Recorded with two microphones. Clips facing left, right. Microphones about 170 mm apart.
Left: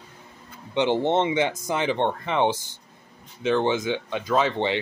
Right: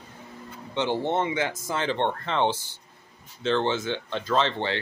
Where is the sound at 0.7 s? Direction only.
20° left (ahead or behind).